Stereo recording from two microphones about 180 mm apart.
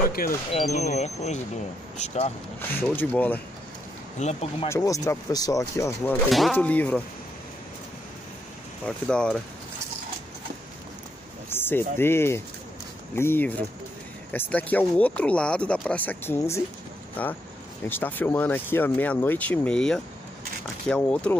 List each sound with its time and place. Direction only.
0.0 s a sound: 55° left (ahead or behind)
0.6 s speech: 45° left (ahead or behind)
2.8 s speech: 10° left (ahead or behind)
4.2 s speech: 35° left (ahead or behind)
4.6 s speech: 15° left (ahead or behind)
8.8 s speech: 5° left (ahead or behind)
11.5 s speech: 10° left (ahead or behind)